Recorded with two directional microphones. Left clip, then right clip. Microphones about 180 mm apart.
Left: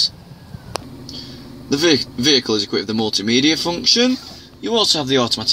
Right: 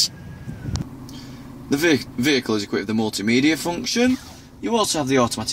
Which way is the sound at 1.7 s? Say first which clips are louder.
Left 3 dB; 15° right (ahead or behind).